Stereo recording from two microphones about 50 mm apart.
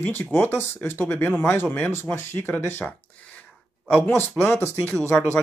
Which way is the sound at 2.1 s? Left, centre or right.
Left.